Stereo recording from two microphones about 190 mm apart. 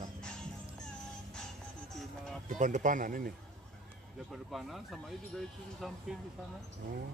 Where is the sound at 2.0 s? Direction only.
5° left (ahead or behind).